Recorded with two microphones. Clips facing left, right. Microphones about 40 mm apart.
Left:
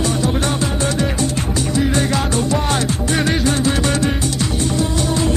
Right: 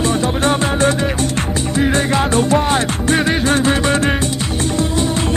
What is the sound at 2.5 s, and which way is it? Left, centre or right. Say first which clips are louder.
Music: right 4 dB; right.